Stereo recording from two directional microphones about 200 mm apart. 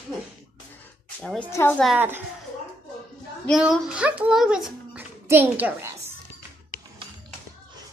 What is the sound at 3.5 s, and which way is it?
A child's voice, centre (ahead or behind).